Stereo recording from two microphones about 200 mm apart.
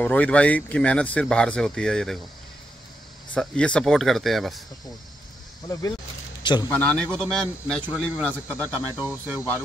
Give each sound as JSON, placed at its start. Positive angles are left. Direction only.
{"t": 0.0, "sound": "speech", "side_deg": 5}
{"t": 3.3, "sound": "speech", "side_deg": 5}
{"t": 5.7, "sound": "a man's voice", "side_deg": 15}